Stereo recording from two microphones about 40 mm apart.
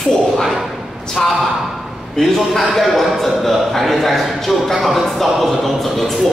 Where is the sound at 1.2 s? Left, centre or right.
Centre.